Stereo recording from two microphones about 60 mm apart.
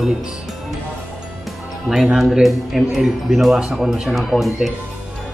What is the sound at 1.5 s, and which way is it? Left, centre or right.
Speech, centre.